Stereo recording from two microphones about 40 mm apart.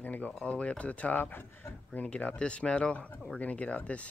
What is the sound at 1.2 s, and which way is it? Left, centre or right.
Speech, left.